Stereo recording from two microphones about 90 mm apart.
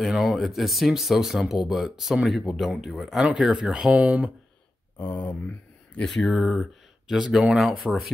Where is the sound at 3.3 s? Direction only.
10° right (ahead or behind).